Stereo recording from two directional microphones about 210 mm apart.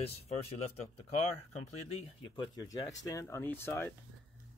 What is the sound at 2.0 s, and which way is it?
Speech, 20° left (ahead or behind).